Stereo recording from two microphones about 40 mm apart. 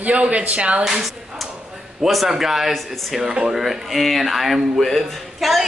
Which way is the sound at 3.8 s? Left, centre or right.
Centre.